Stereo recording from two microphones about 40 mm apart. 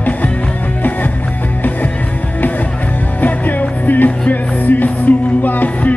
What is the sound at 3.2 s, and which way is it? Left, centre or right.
Music, left.